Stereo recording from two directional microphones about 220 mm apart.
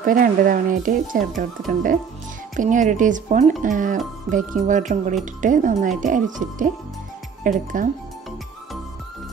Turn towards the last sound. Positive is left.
turn(degrees=-35)  # may be behind; listen again after turning